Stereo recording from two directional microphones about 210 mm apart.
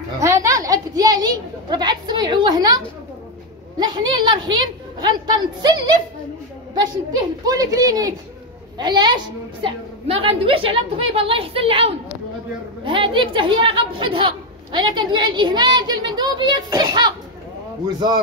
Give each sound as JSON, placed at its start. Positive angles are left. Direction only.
{"t": 0.2, "sound": "speech", "side_deg": -15}
{"t": 3.8, "sound": "a woman's voice", "side_deg": -20}